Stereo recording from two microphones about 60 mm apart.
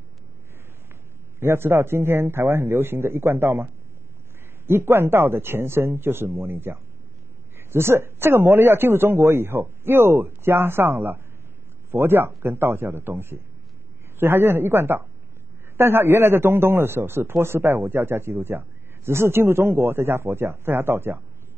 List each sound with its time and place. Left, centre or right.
1.4 s a man's voice: right